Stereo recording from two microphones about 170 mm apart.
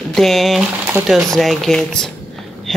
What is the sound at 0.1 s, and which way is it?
Speech, centre (ahead or behind).